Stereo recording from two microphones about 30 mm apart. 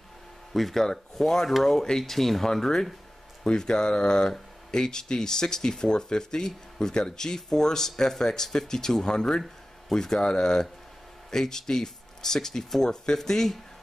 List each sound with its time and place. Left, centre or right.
0.5 s speech: centre
1.1 s speech: centre